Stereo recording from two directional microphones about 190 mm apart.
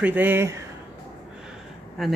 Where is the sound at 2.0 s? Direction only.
Centre (ahead or behind).